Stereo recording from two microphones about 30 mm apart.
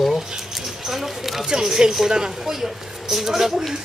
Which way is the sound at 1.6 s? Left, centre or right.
Centre.